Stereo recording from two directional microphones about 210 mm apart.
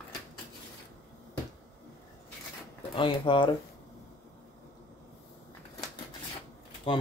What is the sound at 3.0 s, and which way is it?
Speech, 25° left (ahead or behind).